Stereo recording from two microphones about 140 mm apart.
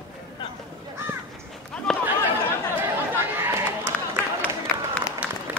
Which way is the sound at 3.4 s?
20° right (ahead or behind).